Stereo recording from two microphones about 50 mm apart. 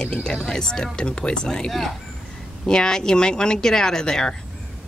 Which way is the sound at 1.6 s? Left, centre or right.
Centre.